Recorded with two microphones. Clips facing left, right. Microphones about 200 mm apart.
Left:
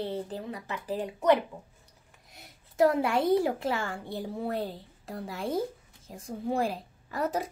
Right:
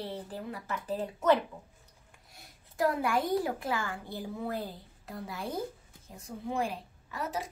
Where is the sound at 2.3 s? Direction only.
25° left (ahead or behind).